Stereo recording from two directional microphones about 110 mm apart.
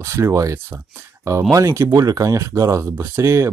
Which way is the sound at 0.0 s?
25° right (ahead or behind).